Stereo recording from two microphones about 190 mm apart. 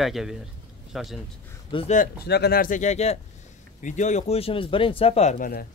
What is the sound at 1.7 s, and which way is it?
Speech, 30° left (ahead or behind).